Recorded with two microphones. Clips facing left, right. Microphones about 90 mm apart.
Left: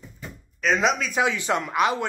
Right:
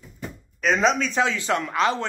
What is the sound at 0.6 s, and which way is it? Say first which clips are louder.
Speech: right 2 dB; centre (ahead or behind).